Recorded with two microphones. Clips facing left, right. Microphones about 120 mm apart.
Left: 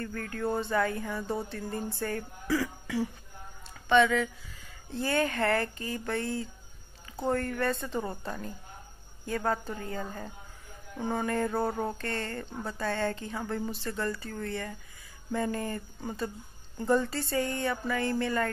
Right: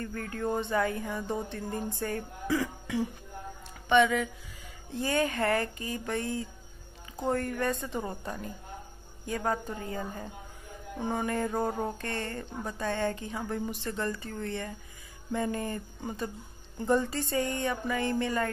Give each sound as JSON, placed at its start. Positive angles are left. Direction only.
{"t": 0.0, "sound": "speech", "side_deg": -25}